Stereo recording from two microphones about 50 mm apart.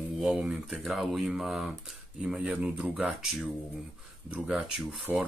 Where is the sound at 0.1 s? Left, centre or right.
Centre.